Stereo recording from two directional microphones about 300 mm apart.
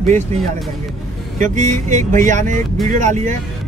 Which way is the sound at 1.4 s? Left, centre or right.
Right.